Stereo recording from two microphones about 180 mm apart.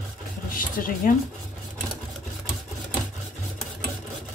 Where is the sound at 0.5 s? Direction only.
50° left (ahead or behind).